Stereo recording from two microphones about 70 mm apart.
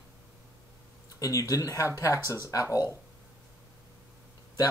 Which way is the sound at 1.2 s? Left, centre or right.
Left.